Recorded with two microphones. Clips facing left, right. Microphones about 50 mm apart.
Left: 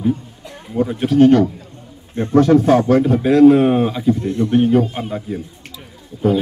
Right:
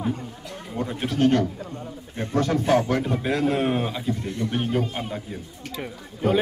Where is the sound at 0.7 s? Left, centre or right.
Centre.